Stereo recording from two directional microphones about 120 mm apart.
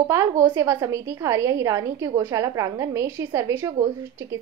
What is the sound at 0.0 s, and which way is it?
A woman's voice, 25° right (ahead or behind).